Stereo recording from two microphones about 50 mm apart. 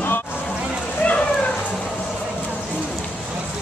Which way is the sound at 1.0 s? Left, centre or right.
Left.